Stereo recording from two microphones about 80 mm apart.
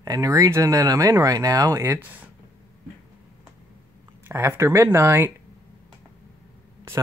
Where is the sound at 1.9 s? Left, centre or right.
Right.